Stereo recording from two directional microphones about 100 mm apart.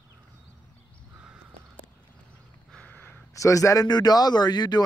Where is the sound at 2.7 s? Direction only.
15° left (ahead or behind).